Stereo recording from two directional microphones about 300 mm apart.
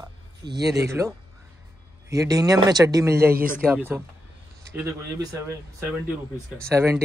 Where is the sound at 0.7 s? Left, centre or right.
Centre.